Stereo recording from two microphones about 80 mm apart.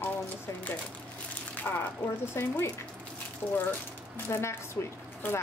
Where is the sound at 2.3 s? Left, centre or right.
Left.